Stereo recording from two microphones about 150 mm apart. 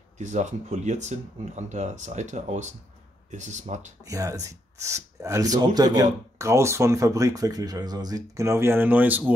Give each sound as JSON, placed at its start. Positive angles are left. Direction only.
{"t": 0.2, "sound": "speech", "side_deg": -55}
{"t": 4.0, "sound": "speech", "side_deg": -20}